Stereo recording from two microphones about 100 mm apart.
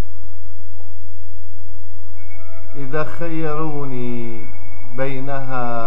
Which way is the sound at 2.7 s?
5° right (ahead or behind).